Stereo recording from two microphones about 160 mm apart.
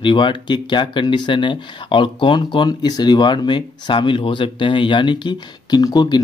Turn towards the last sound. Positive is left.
turn(degrees=25)  # may be behind; listen again after turning